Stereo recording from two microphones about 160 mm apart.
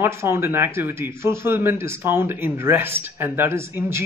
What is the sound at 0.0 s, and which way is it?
A man's voice, 15° right (ahead or behind).